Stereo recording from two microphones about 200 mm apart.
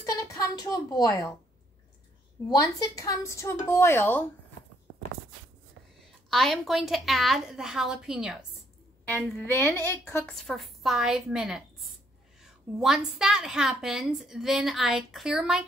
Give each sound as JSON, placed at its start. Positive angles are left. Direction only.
{"t": 0.2, "sound": "a woman's voice", "side_deg": 20}
{"t": 2.6, "sound": "speech", "side_deg": 15}
{"t": 6.3, "sound": "a woman's voice", "side_deg": 0}
{"t": 9.1, "sound": "a woman's voice", "side_deg": 10}